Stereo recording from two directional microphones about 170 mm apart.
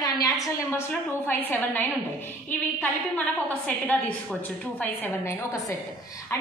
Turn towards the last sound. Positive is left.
turn(degrees=15)  # may be behind; listen again after turning